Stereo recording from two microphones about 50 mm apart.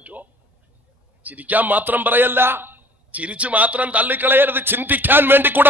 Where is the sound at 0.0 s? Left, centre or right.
Right.